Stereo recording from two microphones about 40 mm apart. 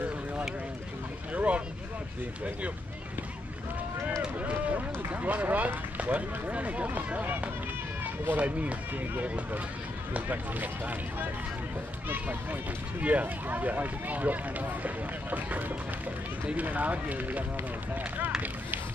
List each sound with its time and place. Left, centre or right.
1.3 s boat: right
4.4 s run: right
5.9 s speech: right
8.4 s speech: right
16.5 s speech: right